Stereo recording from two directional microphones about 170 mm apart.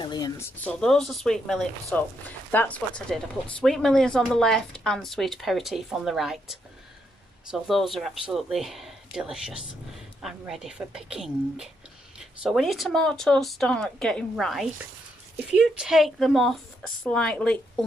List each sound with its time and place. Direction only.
0.0 s speech: 25° left (ahead or behind)
0.7 s speech: 5° left (ahead or behind)